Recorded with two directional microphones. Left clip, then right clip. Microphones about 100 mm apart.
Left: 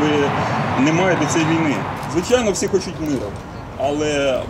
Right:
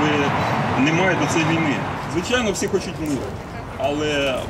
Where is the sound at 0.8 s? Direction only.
20° left (ahead or behind).